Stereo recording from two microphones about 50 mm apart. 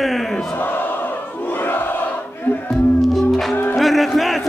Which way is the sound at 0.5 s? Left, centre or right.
Left.